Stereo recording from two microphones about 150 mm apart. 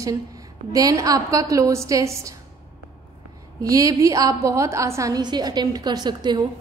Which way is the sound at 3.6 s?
25° right (ahead or behind).